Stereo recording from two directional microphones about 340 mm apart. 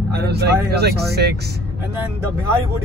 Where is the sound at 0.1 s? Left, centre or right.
Right.